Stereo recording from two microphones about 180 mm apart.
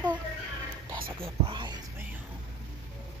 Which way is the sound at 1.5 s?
25° right (ahead or behind).